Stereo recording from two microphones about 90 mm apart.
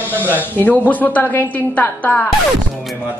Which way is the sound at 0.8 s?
20° left (ahead or behind).